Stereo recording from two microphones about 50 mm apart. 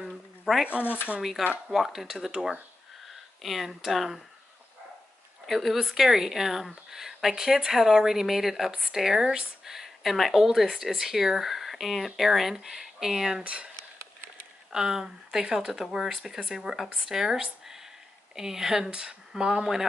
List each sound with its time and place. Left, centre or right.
0.0 s a sound: centre
0.8 s speech: left
1.7 s speech: centre
5.5 s speech: centre
13.4 s speech: right
14.7 s speech: centre